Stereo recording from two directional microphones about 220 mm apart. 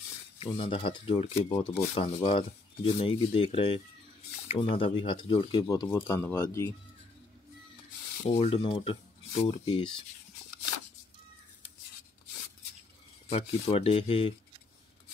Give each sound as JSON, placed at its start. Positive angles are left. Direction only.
{"t": 0.4, "sound": "speech", "side_deg": 25}
{"t": 8.2, "sound": "speech", "side_deg": 30}
{"t": 13.3, "sound": "speech", "side_deg": 30}